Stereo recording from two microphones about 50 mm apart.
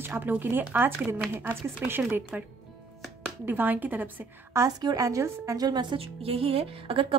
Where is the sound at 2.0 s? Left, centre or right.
Right.